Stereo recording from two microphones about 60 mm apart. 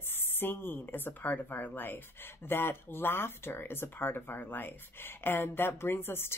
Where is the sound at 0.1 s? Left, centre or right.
Left.